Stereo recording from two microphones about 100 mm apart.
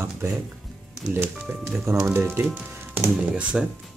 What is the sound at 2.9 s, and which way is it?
Speech, 20° right (ahead or behind).